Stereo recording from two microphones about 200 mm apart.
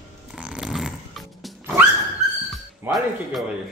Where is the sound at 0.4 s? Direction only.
5° right (ahead or behind).